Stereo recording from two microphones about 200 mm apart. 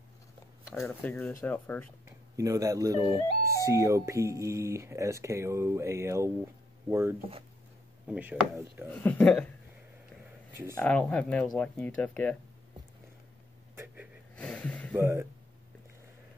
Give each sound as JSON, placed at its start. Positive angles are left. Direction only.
{"t": 0.7, "sound": "speech", "side_deg": 5}
{"t": 2.0, "sound": "speech", "side_deg": -15}
{"t": 8.9, "sound": "speech", "side_deg": 10}
{"t": 10.8, "sound": "speech", "side_deg": 5}
{"t": 14.3, "sound": "a sound", "side_deg": 5}
{"t": 15.0, "sound": "speech", "side_deg": -10}